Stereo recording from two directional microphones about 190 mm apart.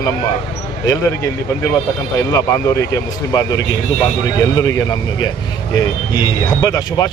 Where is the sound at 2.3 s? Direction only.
15° left (ahead or behind).